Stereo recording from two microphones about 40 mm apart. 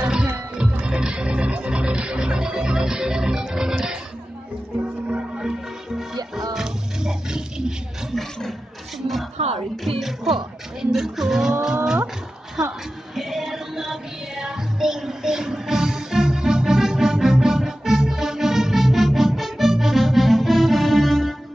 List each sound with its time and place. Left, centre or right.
0.0 s music: right
5.0 s music: right
5.4 s music: centre
8.1 s a sound: centre
9.8 s music: centre
10.9 s a sound: centre
11.6 s wild animals: centre
12.6 s music: centre